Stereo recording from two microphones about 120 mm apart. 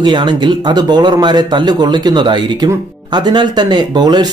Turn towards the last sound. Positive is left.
turn(degrees=-35)  # may be behind; listen again after turning